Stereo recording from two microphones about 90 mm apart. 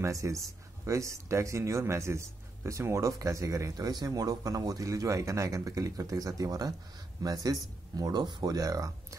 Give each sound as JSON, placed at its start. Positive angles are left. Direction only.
{"t": 0.0, "sound": "a man's voice", "side_deg": -35}